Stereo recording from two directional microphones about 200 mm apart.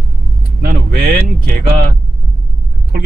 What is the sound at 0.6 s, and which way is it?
Vehicle, 50° right (ahead or behind).